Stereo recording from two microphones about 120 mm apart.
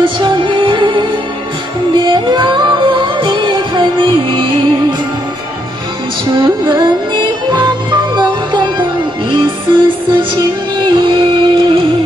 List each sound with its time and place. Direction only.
0.0 s music: 40° right (ahead or behind)
6.3 s music: 35° right (ahead or behind)